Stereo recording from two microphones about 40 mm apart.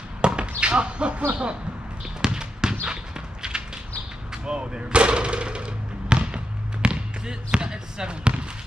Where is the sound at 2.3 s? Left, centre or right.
Centre.